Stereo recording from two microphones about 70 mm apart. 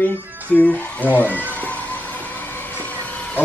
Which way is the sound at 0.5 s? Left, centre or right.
Left.